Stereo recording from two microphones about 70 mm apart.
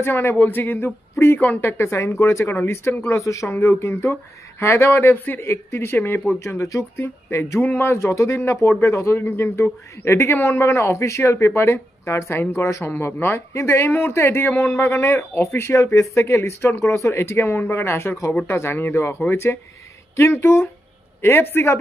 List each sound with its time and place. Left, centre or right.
0.0 s speech: left
2.4 s speech: left
3.1 s speech: left
3.4 s speech: left
6.4 s speech: left